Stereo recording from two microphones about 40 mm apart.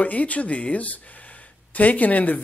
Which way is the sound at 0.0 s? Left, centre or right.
Left.